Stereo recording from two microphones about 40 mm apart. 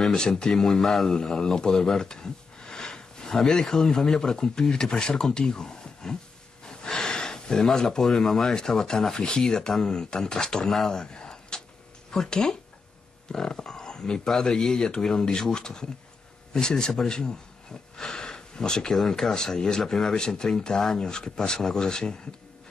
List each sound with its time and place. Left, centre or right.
0.0 s speech: centre
6.6 s gasp: centre
7.6 s speech: centre
10.9 s a sound: centre
12.3 s speech: centre
17.9 s sniff: centre
18.9 s speech: centre